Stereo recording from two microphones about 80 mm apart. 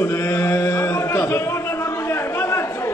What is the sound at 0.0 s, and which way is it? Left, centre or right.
Chant, left.